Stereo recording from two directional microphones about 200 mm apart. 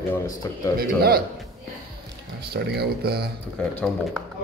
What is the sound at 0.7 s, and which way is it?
Speech, 50° right (ahead or behind).